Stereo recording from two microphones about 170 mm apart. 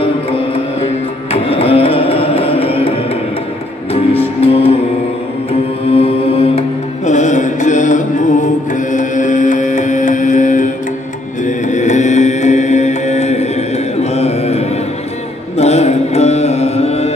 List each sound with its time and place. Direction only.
1.3 s music: 35° left (ahead or behind)
4.2 s music: 35° left (ahead or behind)
5.5 s mantra: 35° left (ahead or behind)
7.1 s music: 45° left (ahead or behind)
11.4 s mantra: 45° left (ahead or behind)